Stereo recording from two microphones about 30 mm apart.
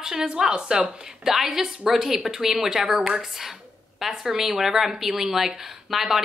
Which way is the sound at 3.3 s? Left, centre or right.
Centre.